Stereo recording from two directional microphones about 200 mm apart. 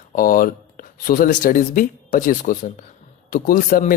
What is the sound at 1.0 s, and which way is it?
A man's voice, 45° left (ahead or behind).